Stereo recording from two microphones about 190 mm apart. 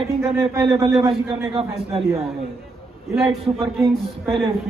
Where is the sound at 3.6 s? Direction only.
15° right (ahead or behind).